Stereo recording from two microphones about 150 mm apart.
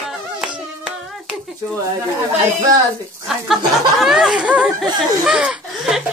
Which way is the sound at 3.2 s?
Centre (ahead or behind).